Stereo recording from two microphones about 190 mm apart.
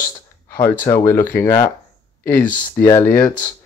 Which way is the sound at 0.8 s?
15° left (ahead or behind).